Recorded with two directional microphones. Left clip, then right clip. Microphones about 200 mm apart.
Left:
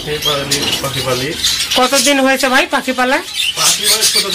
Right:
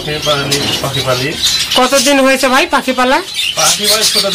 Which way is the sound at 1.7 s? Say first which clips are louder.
Right 2 dB; 10° right (ahead or behind).